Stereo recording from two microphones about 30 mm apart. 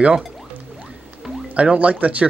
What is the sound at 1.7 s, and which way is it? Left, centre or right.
Speech, right.